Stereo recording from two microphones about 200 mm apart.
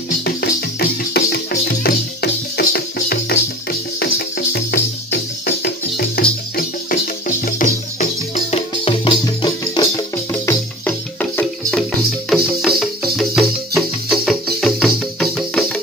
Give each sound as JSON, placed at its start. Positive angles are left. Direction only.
{"t": 0.2, "sound": "music", "side_deg": 50}